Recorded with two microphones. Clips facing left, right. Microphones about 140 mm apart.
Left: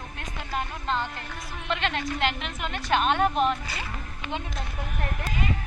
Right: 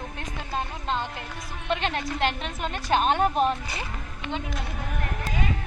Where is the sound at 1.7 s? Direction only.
35° right (ahead or behind).